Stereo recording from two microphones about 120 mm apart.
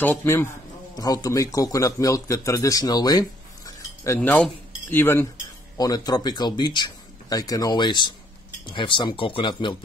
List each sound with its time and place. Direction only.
0.0 s a man's voice: 20° left (ahead or behind)
0.9 s a man's voice: 30° left (ahead or behind)
5.8 s speech: 30° left (ahead or behind)